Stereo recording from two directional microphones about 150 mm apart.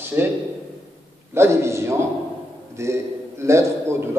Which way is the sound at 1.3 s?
15° right (ahead or behind).